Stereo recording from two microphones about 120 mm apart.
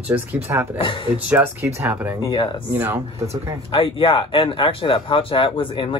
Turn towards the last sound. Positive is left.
turn(degrees=45)  # may be behind; listen again after turning